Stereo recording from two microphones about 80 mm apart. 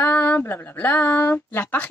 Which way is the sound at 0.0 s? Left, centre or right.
Centre.